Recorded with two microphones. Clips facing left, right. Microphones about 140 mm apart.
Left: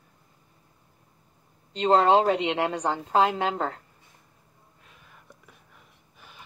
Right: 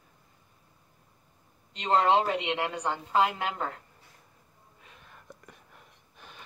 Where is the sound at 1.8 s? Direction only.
30° left (ahead or behind).